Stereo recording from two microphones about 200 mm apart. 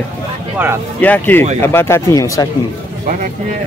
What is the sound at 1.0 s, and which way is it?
Speech, 10° left (ahead or behind).